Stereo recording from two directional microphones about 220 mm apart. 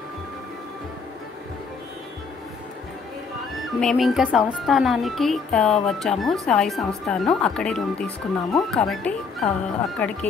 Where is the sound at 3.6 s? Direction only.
Centre (ahead or behind).